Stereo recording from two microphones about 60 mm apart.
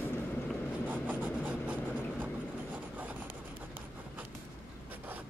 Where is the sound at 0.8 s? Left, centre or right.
Right.